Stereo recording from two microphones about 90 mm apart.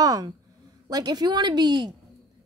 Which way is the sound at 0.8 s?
50° right (ahead or behind).